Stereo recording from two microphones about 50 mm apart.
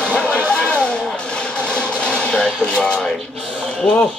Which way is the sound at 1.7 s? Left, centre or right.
Left.